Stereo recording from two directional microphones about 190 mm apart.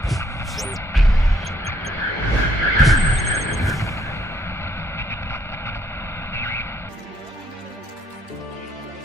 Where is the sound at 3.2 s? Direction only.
15° left (ahead or behind).